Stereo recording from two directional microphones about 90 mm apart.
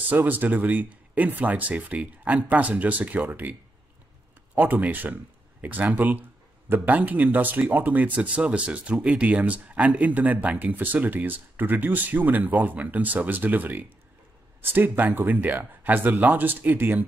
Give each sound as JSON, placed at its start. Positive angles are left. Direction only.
{"t": 0.1, "sound": "speech", "side_deg": -20}
{"t": 4.6, "sound": "speech", "side_deg": -20}